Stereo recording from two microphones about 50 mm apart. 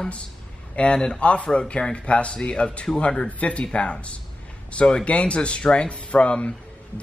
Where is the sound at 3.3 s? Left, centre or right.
Left.